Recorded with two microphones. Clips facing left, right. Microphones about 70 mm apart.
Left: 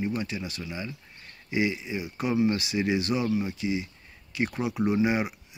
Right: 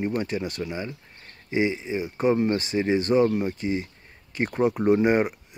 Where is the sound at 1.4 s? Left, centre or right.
Right.